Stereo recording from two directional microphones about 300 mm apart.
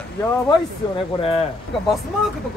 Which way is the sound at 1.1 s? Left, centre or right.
Centre.